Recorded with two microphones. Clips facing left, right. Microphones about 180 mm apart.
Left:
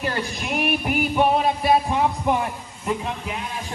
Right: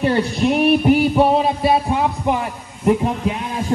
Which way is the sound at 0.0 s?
30° right (ahead or behind).